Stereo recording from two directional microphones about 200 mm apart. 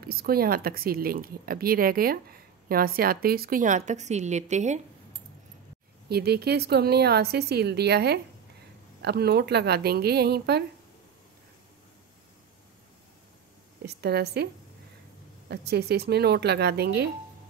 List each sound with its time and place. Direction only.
0.0 s a woman's voice: 50° right (ahead or behind)
6.0 s speech: 50° right (ahead or behind)
13.8 s speech: 55° right (ahead or behind)